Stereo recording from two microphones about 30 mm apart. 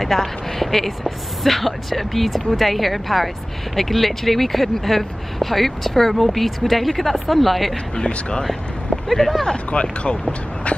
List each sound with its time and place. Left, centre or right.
0.0 s speech: centre
7.9 s speech: left
9.2 s speech: centre
9.7 s speech: left